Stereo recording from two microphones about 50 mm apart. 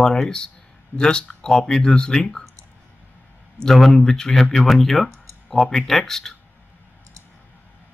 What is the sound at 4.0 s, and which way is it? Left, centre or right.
Speech, centre.